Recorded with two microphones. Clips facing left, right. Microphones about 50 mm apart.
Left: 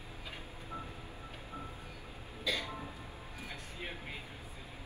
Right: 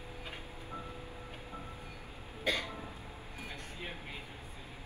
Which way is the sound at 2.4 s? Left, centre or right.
Right.